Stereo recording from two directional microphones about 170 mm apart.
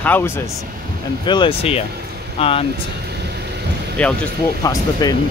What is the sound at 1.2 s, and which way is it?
Speech, 25° left (ahead or behind).